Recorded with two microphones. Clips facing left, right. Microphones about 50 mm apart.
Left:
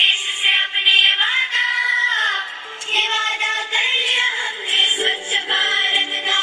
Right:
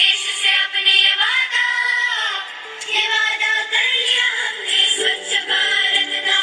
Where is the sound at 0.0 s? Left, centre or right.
Centre.